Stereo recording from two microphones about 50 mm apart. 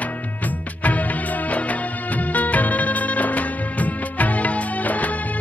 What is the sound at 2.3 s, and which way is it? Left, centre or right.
Music, left.